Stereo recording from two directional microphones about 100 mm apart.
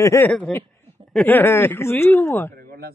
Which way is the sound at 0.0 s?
30° left (ahead or behind).